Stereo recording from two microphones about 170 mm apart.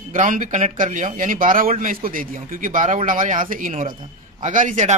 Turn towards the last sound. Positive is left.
turn(degrees=-45)  # may be behind; listen again after turning